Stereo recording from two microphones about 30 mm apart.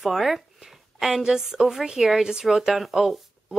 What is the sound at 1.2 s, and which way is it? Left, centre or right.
Speech, right.